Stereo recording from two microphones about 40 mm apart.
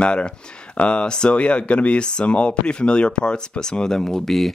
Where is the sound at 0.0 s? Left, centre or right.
Left.